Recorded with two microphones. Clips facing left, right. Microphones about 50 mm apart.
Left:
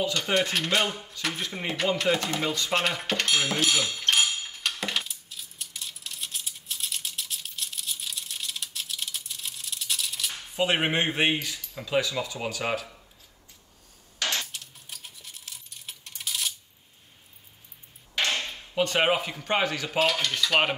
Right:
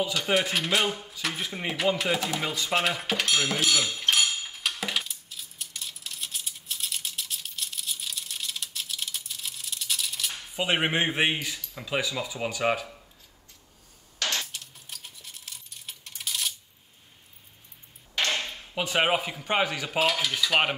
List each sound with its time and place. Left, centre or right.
0.0 s mechanisms: centre
14.4 s a sound: centre
18.8 s dishes: centre